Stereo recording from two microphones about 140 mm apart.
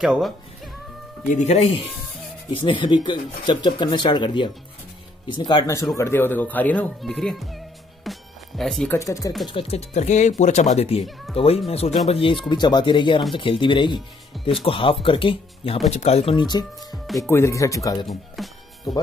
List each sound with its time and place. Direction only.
0.0 s speech: 5° right (ahead or behind)
1.3 s speech: 55° left (ahead or behind); by 5.7 s 35° left (ahead or behind)
5.9 s speech: 15° left (ahead or behind)
7.0 s music: 5° left (ahead or behind)
8.9 s speech: 20° left (ahead or behind)
9.5 s speech: 45° left (ahead or behind)
11.0 s speech: centre (ahead or behind)
11.3 s speech: 45° left (ahead or behind)
16.3 s speech: 30° left (ahead or behind)
16.9 s speech: centre (ahead or behind)
17.2 s speech: 20° left (ahead or behind)
18.0 s music: centre (ahead or behind)